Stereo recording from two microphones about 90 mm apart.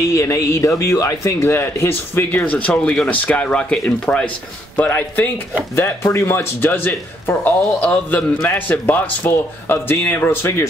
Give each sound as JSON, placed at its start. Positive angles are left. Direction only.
{"t": 0.1, "sound": "speech", "side_deg": 35}
{"t": 6.1, "sound": "speech", "side_deg": 30}